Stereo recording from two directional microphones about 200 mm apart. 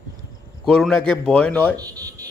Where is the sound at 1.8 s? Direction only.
15° right (ahead or behind).